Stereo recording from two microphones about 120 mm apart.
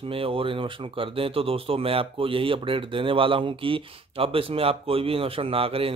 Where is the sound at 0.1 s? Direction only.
50° right (ahead or behind).